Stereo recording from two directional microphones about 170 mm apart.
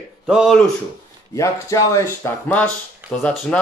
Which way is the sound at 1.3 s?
20° left (ahead or behind).